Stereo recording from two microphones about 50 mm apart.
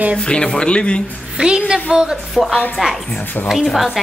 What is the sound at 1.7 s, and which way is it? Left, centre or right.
Speech, centre.